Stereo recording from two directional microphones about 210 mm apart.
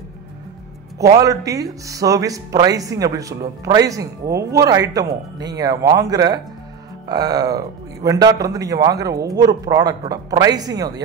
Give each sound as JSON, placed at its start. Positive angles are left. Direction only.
{"t": 1.2, "sound": "speech", "side_deg": -15}